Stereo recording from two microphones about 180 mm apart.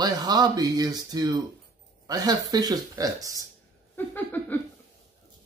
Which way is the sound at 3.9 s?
10° left (ahead or behind).